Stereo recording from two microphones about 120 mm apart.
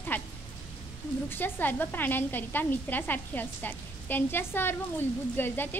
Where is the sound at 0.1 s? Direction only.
15° left (ahead or behind).